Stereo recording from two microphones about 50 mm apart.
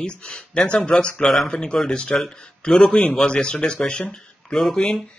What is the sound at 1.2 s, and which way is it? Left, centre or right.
Speech, centre.